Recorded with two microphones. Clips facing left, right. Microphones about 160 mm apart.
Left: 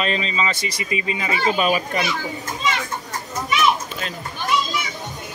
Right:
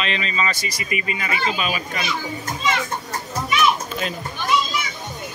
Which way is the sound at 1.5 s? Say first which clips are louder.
Left 6 dB; 45° left (ahead or behind).